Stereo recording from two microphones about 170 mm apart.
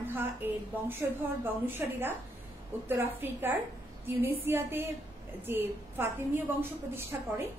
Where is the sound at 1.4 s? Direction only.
15° right (ahead or behind).